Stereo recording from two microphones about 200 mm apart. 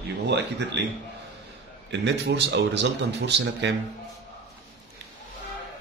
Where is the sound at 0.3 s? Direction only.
60° right (ahead or behind).